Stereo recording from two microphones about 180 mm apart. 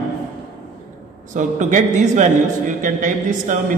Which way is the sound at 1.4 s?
45° right (ahead or behind).